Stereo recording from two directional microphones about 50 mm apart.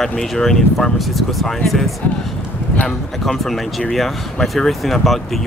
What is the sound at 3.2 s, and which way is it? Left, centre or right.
Speech, centre.